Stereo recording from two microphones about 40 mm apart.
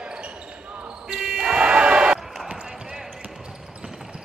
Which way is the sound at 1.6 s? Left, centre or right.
Right.